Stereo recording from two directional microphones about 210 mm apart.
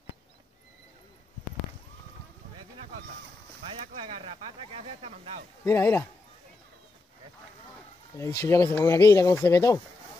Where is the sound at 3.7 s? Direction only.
25° right (ahead or behind).